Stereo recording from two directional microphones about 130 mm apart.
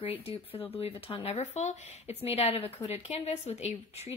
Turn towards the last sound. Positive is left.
turn(degrees=55)  # may be behind; listen again after turning